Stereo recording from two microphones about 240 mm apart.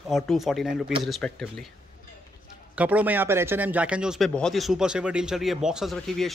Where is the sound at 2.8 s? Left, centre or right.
Centre.